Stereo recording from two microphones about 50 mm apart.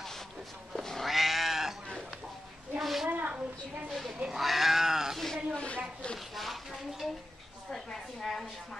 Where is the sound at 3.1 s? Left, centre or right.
Right.